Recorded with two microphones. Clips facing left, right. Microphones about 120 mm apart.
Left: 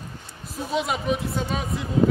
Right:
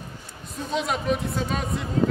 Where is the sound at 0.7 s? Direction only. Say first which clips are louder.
Even; 5° left (ahead or behind).